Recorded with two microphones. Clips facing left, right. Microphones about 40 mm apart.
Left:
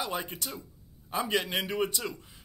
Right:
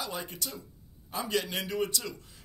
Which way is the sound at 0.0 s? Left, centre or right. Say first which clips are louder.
Left 3 dB; left.